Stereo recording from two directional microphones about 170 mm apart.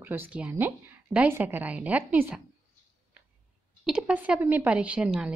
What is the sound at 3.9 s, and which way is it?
A woman's voice, 5° right (ahead or behind).